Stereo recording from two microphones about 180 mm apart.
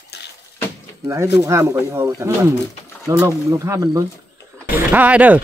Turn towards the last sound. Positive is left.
turn(degrees=-10)  # may be behind; listen again after turning